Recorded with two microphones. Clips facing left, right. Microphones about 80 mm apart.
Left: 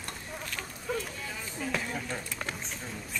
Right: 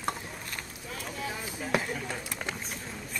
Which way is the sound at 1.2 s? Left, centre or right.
Centre.